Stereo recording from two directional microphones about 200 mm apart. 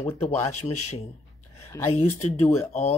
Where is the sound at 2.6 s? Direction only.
35° left (ahead or behind).